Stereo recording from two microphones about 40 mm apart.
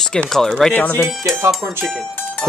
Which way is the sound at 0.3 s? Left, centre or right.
Centre.